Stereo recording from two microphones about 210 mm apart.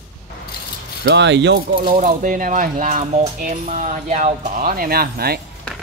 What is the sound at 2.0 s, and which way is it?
Speech, 40° right (ahead or behind).